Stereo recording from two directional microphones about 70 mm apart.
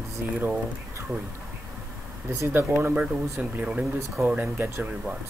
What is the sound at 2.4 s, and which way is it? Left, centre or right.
Speech, right.